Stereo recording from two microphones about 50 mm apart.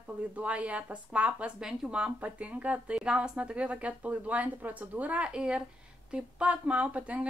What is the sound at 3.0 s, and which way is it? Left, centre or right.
Speech, centre.